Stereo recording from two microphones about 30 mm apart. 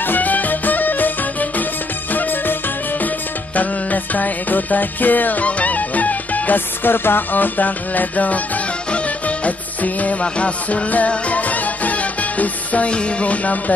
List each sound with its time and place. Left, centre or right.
0.0 s music: left
3.5 s music: left
5.4 s music: left
10.4 s music: left